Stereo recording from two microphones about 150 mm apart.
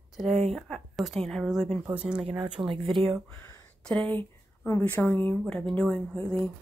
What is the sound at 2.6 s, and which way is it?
Speech, 35° right (ahead or behind).